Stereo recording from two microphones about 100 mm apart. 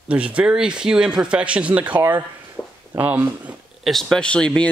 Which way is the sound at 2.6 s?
10° left (ahead or behind).